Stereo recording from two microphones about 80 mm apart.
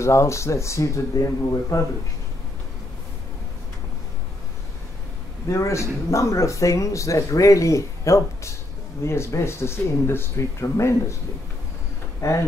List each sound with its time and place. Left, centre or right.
0.0 s speech: left
5.5 s speech: left